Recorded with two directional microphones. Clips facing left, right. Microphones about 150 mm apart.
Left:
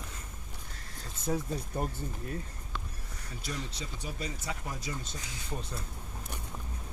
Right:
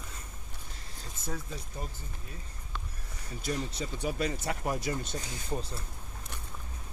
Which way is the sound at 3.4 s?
55° right (ahead or behind).